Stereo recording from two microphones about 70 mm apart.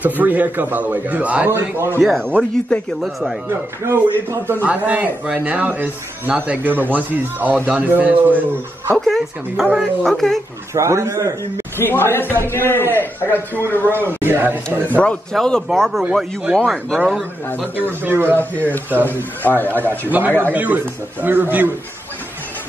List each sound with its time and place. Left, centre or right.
0.2 s speech: right
1.5 s speech: right
3.0 s speech: centre
3.4 s speech: right
4.6 s speech: right
8.9 s speech: centre
10.7 s a man's voice: right
11.8 s a man's voice: left
13.9 s speech: right
15.3 s speech: centre
15.9 s speech: centre
18.0 s speech: right
18.4 s a man's voice: left
19.7 s speech: right